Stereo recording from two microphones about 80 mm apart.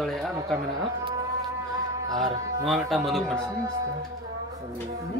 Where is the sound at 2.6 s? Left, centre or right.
Centre.